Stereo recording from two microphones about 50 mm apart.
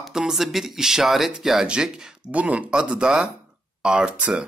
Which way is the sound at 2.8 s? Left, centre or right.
Centre.